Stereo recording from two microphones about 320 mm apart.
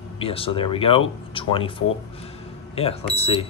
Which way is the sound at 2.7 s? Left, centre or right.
Centre.